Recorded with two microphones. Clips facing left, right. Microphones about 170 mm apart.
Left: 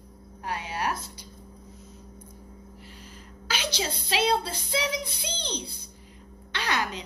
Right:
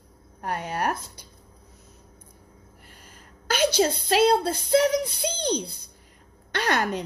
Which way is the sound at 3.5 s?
50° right (ahead or behind).